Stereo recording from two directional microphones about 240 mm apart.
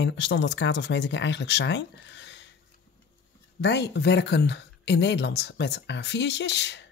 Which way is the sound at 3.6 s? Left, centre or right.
Left.